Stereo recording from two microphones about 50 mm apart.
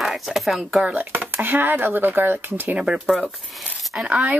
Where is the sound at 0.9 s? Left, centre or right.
Right.